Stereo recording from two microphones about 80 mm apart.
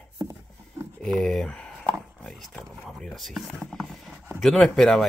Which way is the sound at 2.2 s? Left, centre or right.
Centre.